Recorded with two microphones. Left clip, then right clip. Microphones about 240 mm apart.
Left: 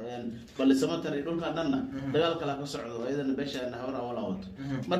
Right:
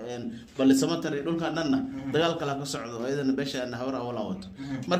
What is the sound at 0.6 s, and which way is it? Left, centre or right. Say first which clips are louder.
Speech: right 3 dB; right.